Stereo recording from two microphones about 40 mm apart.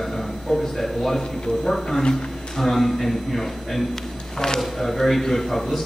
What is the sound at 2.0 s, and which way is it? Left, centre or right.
Speech, left.